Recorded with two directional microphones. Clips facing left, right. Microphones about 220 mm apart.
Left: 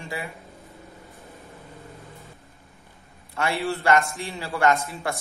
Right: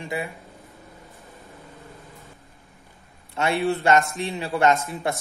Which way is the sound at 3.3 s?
20° right (ahead or behind).